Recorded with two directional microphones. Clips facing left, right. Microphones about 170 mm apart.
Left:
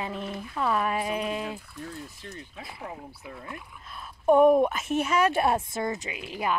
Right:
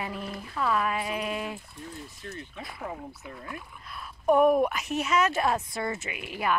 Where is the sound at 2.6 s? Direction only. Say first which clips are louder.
Right 2 dB; 25° left (ahead or behind).